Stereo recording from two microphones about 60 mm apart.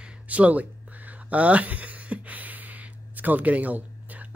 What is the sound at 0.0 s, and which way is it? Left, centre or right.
Speech, right.